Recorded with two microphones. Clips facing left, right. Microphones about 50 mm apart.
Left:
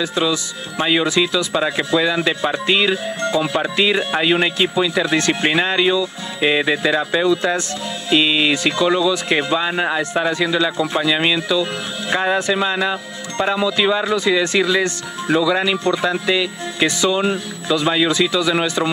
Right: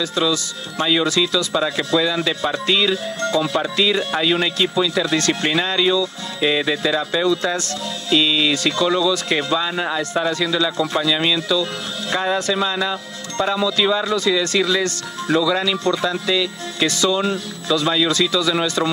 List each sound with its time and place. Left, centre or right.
0.0 s speech: left